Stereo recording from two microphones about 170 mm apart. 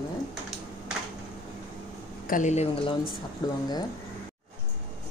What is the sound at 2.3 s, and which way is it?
Speech, 45° left (ahead or behind).